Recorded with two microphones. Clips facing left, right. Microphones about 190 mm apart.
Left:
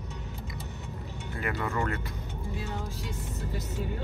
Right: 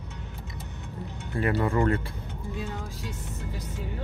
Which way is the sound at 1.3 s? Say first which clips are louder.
Right 7 dB; 30° right (ahead or behind).